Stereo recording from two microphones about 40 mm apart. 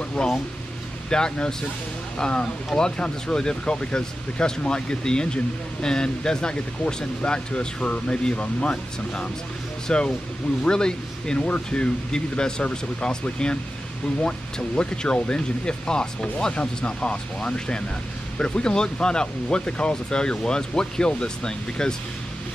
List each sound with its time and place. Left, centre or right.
0.2 s speech: centre
14.8 s speech: left